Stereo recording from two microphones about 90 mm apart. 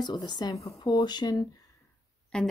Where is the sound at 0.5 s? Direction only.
40° left (ahead or behind).